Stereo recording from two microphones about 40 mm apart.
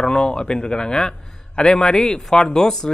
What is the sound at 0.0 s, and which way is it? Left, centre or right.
A man's voice, left.